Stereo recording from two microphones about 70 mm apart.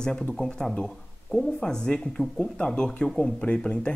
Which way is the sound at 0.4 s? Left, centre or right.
Centre.